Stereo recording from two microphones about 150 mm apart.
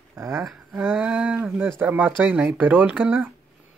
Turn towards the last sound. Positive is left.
turn(degrees=-10)  # may be behind; listen again after turning